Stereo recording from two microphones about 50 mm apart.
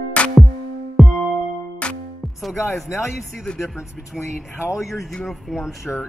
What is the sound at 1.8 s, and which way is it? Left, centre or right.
Music, left.